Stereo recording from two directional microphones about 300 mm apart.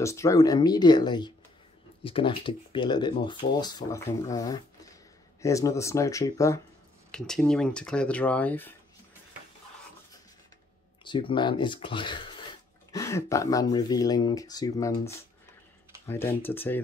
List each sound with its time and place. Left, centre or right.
0.0 s speech: centre
11.1 s speech: centre